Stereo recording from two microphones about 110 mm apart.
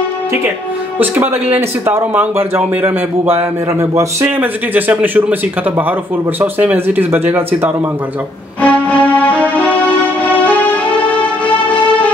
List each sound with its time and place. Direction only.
0.9 s a man's voice: 15° right (ahead or behind)
6.4 s a man's voice: 15° right (ahead or behind)
8.6 s music: 10° left (ahead or behind)